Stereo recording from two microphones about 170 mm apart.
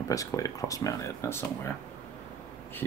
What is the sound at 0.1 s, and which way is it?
Speech, 20° left (ahead or behind).